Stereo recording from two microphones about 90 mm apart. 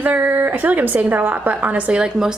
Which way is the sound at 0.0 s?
20° right (ahead or behind).